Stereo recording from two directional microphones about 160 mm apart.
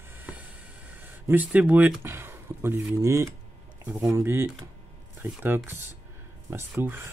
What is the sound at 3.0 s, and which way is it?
Speech, 20° right (ahead or behind).